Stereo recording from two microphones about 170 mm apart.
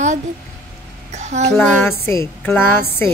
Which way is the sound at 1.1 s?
45° right (ahead or behind).